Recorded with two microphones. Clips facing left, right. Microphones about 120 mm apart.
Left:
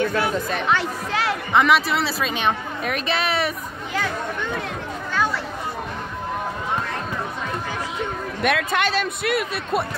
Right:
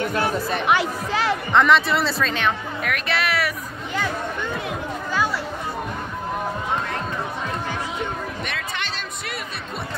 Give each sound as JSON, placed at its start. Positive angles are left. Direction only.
{"t": 0.0, "sound": "speech", "side_deg": -25}
{"t": 0.3, "sound": "speech", "side_deg": 0}
{"t": 8.4, "sound": "speech", "side_deg": 60}